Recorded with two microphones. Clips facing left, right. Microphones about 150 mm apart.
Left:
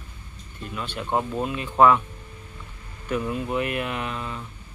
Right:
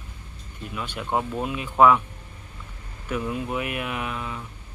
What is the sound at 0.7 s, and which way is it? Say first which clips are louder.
Speech: left 1 dB; 5° right (ahead or behind).